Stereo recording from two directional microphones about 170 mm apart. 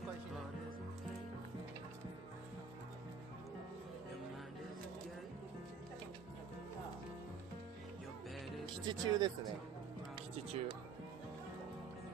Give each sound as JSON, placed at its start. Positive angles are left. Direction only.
{"t": 8.8, "sound": "speech", "side_deg": -25}
{"t": 10.3, "sound": "music", "side_deg": -35}